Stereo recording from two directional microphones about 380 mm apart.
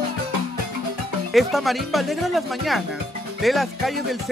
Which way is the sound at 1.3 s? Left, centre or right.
Centre.